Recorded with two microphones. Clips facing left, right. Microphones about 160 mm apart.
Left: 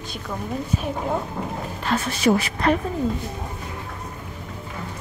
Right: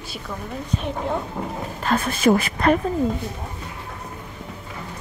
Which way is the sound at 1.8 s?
50° right (ahead or behind).